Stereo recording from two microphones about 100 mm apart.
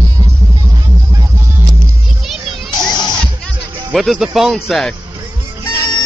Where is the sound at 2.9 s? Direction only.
45° left (ahead or behind).